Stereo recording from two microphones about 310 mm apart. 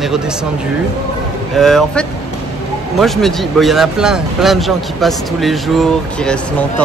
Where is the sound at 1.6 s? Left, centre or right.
Centre.